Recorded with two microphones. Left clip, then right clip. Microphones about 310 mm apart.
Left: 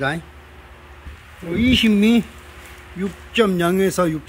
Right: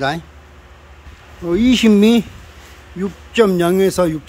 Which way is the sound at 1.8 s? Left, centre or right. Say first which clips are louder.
Right 5 dB; centre.